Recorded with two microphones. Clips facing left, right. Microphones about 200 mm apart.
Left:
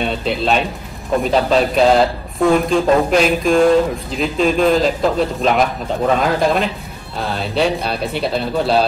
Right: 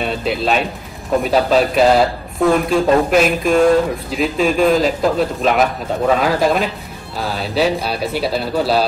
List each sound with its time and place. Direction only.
0.0 s speech: 5° right (ahead or behind)